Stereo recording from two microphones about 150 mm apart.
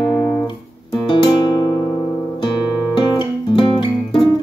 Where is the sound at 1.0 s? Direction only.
30° left (ahead or behind).